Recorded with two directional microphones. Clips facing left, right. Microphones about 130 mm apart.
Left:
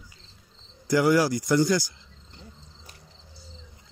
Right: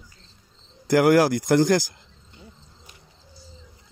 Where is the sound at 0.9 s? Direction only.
60° right (ahead or behind).